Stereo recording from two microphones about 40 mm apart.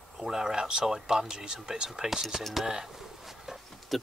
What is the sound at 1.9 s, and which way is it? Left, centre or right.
Speech, centre.